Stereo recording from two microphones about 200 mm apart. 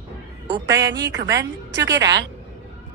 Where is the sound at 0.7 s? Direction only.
60° right (ahead or behind).